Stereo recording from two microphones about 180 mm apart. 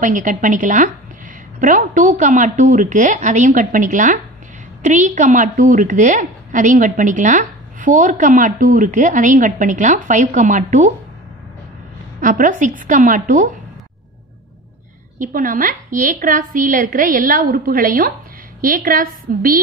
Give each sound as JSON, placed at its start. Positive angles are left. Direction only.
{"t": 0.0, "sound": "a woman's voice", "side_deg": -45}
{"t": 12.2, "sound": "a woman's voice", "side_deg": -50}
{"t": 15.1, "sound": "a woman's voice", "side_deg": -45}